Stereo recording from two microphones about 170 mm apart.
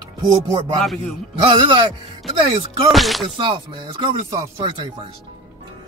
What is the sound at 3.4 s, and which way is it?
Speech, 30° right (ahead or behind).